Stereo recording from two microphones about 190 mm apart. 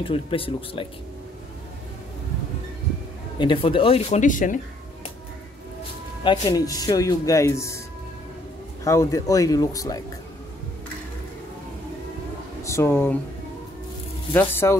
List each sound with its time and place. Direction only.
0.0 s speech: 30° left (ahead or behind)
3.3 s speech: 25° left (ahead or behind); by 4.6 s 45° left (ahead or behind)
6.2 s speech: 25° left (ahead or behind)
8.8 s speech: 15° left (ahead or behind)
12.6 s speech: 15° left (ahead or behind)
14.5 s speech: 15° left (ahead or behind)